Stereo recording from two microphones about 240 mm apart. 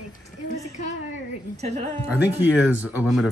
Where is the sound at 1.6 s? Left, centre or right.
Right.